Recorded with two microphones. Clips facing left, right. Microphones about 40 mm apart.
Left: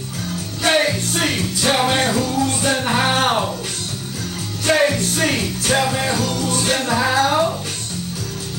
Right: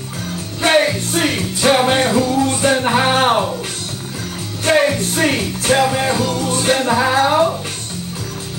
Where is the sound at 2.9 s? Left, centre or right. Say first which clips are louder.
Right 1 dB; centre.